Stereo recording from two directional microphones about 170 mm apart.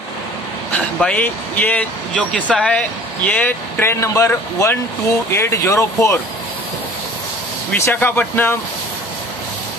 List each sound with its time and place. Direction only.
0.7 s speech: 10° left (ahead or behind)
7.8 s speech: 10° left (ahead or behind)